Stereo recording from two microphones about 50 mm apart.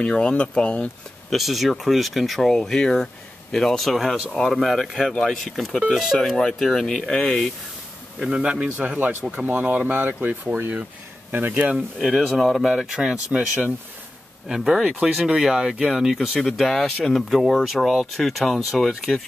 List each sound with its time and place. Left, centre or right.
0.0 s speech: centre
1.3 s speech: centre
5.1 s speech: centre
8.2 s speech: centre
9.8 s speech: right
12.0 s speech: centre
12.7 s speech: centre
14.5 s speech: centre
16.3 s speech: centre